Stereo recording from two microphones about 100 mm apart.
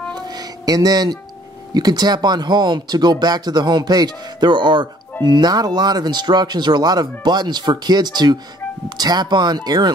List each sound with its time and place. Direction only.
0.1 s music: 40° right (ahead or behind)
1.7 s speech: 40° right (ahead or behind)